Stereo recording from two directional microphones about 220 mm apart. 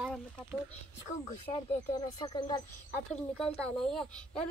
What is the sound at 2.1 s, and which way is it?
Speech, 20° left (ahead or behind).